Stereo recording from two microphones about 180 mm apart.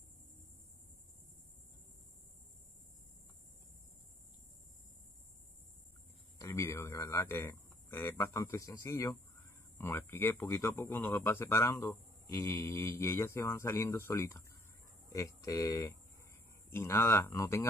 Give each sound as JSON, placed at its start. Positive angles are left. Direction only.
{"t": 6.3, "sound": "speech", "side_deg": 15}